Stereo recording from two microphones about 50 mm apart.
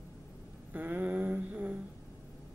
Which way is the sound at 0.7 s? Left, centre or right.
Right.